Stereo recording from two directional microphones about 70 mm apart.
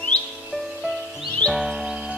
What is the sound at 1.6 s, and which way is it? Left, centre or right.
Music, centre.